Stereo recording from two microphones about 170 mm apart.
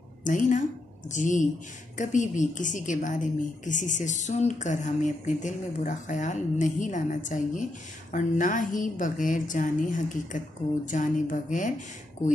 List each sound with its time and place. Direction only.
0.2 s a woman's voice: 50° left (ahead or behind)